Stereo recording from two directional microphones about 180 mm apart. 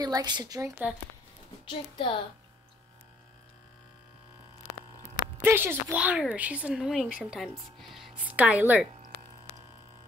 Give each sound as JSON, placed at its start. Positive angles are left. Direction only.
{"t": 0.0, "sound": "speech", "side_deg": -20}
{"t": 1.7, "sound": "a woman's voice", "side_deg": 25}
{"t": 5.4, "sound": "a woman's voice", "side_deg": -10}